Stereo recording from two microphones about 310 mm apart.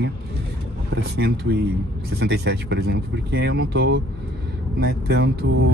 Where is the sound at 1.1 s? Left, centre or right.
Right.